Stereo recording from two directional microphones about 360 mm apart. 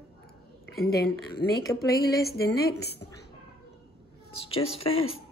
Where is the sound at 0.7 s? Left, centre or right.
Left.